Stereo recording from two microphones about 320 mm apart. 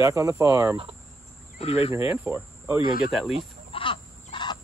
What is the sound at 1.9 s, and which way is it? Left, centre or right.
Cricket, centre.